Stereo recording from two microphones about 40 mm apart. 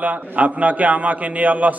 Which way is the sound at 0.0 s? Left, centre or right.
Right.